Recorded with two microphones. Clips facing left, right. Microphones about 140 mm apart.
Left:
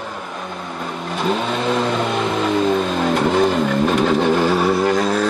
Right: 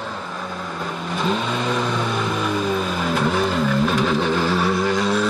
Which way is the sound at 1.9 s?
65° left (ahead or behind).